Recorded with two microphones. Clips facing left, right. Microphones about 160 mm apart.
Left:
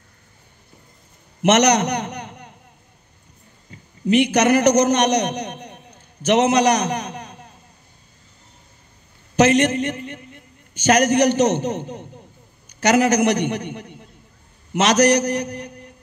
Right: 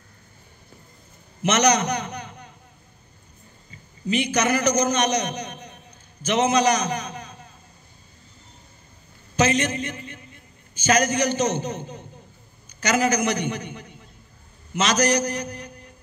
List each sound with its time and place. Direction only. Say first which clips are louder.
1.4 s a man's voice: left 4 dB; 70° left (ahead or behind)
4.1 s a man's voice: left 7 dB; 70° left (ahead or behind)
9.4 s a man's voice: left 6 dB; 70° left (ahead or behind)